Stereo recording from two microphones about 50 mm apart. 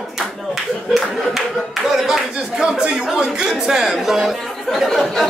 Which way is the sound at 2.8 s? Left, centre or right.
Right.